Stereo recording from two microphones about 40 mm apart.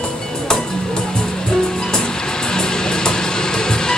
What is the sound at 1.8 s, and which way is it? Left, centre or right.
Music, centre.